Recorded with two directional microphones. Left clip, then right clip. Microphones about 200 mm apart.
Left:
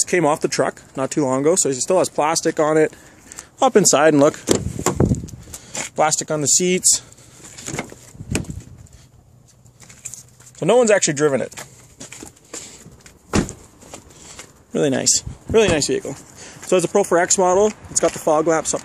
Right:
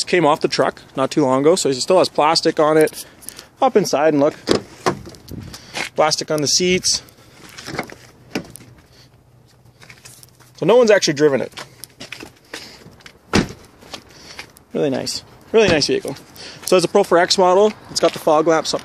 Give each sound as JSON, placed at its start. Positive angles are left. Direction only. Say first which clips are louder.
{"t": 0.0, "sound": "speech", "louder": "right 2 dB", "side_deg": 0}
{"t": 3.5, "sound": "speech", "louder": "even", "side_deg": 15}
{"t": 3.8, "sound": "speech", "louder": "left 2 dB", "side_deg": 25}
{"t": 5.7, "sound": "speech", "louder": "right 2 dB", "side_deg": -5}
{"t": 10.6, "sound": "speech", "louder": "right 2 dB", "side_deg": 0}
{"t": 14.7, "sound": "speech", "louder": "left 2 dB", "side_deg": 20}
{"t": 15.5, "sound": "speech", "louder": "right 2 dB", "side_deg": 0}